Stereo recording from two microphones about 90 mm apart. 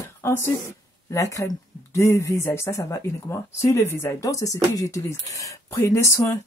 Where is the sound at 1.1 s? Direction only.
40° left (ahead or behind).